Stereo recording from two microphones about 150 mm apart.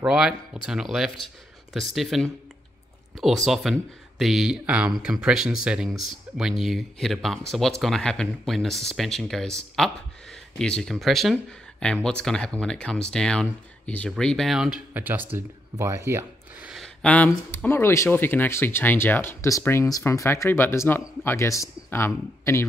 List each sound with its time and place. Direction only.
0.0 s speech: 5° right (ahead or behind); by 22.7 s 20° left (ahead or behind)